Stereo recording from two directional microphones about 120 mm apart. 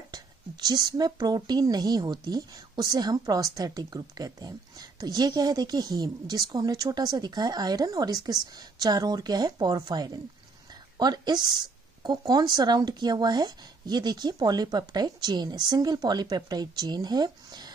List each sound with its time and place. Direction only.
0.1 s speech: 35° right (ahead or behind)